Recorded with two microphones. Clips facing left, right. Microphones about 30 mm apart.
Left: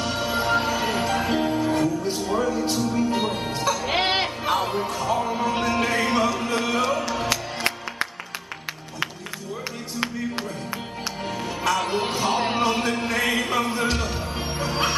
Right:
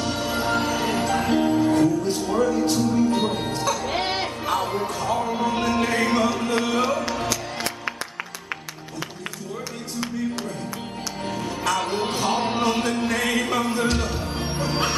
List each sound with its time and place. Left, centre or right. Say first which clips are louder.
0.0 s music: even; centre
3.8 s music: left 2 dB; left
4.6 s music: even; centre
11.2 s music: even; centre